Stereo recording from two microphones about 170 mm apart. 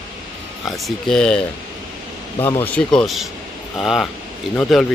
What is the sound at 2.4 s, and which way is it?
Speech, 10° left (ahead or behind).